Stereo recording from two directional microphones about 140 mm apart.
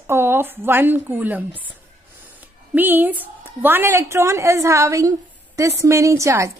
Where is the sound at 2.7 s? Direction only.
15° right (ahead or behind).